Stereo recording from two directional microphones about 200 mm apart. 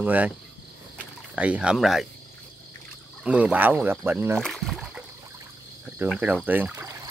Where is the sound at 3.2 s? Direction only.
5° right (ahead or behind).